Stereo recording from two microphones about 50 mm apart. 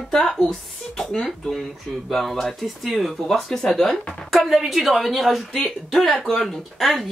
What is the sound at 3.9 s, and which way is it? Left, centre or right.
Speech, centre.